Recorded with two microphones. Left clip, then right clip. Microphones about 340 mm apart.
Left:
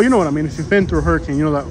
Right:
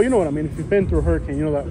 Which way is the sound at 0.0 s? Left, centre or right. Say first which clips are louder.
Left 3 dB; left.